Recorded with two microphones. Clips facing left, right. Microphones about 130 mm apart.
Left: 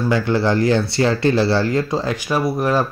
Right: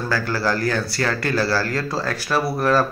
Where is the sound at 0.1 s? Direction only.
20° left (ahead or behind).